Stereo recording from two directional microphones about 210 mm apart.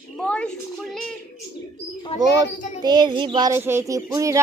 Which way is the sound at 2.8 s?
20° right (ahead or behind).